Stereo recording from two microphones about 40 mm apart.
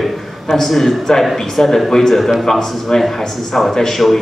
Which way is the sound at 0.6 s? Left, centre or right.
Centre.